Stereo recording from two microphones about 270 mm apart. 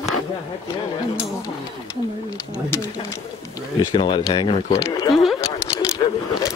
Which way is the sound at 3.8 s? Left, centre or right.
Centre.